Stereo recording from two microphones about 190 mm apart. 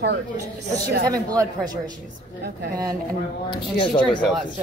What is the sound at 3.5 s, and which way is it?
Speech, 25° left (ahead or behind).